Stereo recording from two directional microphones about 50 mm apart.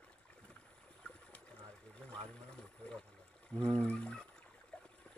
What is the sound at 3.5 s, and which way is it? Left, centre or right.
Music, centre.